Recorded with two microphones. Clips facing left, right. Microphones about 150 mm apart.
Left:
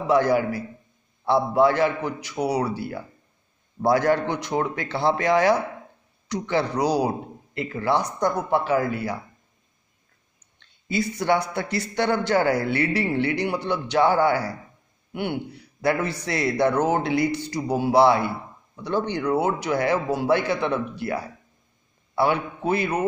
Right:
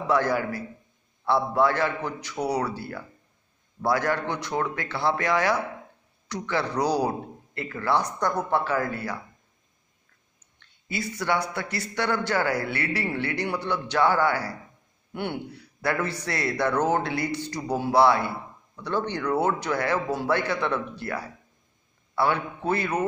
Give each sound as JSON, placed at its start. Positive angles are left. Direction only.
{"t": 0.0, "sound": "speech", "side_deg": 15}
{"t": 3.8, "sound": "a man's voice", "side_deg": 25}
{"t": 10.9, "sound": "a man's voice", "side_deg": 20}
{"t": 15.5, "sound": "a man's voice", "side_deg": 20}